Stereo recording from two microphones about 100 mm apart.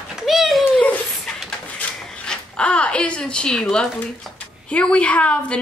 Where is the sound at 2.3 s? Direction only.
10° left (ahead or behind).